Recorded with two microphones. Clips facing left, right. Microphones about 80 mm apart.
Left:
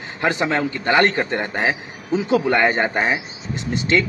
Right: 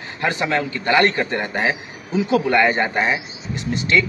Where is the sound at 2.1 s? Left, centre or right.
Left.